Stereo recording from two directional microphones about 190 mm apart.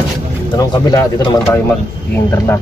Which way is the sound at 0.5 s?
20° left (ahead or behind).